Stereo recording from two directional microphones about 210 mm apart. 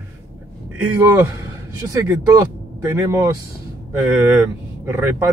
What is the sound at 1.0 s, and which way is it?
Speech, 10° right (ahead or behind).